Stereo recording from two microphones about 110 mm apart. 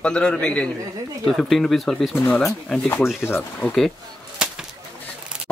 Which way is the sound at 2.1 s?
20° left (ahead or behind).